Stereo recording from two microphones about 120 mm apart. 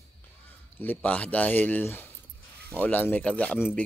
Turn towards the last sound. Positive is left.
turn(degrees=10)  # may be behind; listen again after turning